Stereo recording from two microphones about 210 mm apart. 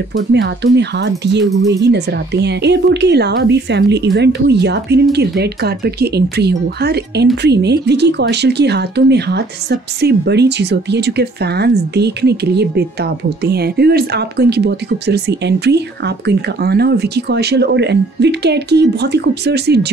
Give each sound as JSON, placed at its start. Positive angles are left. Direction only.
{"t": 0.3, "sound": "speech", "side_deg": -55}
{"t": 2.4, "sound": "speech", "side_deg": -55}